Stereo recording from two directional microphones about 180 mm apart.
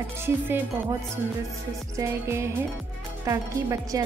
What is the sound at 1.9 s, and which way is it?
Speech, 15° right (ahead or behind).